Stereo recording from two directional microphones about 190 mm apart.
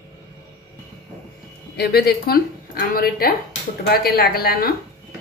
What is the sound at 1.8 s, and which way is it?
A woman's voice, 55° left (ahead or behind).